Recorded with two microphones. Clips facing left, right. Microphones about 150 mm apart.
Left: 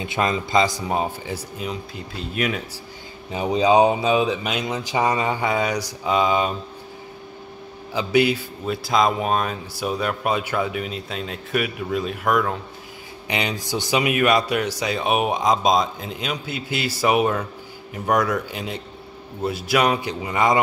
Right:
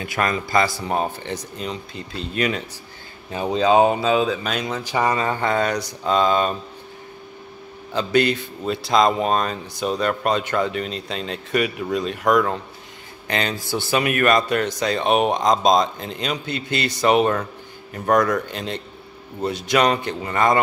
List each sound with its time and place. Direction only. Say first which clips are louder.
0.0 s speech: left 1 dB; 20° left (ahead or behind); by 2.6 s 5° left (ahead or behind)
3.3 s speech: even; 15° left (ahead or behind)
7.9 s speech: even; 10° left (ahead or behind)
13.3 s speech: right 1 dB; 15° left (ahead or behind)